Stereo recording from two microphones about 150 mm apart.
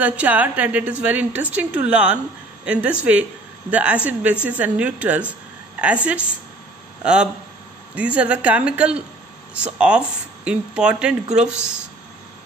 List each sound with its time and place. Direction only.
0.0 s speech: 10° right (ahead or behind)